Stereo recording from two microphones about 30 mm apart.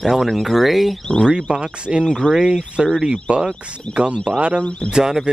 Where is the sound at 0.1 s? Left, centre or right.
Centre.